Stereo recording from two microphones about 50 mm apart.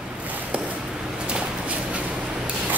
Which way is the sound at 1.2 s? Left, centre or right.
Centre.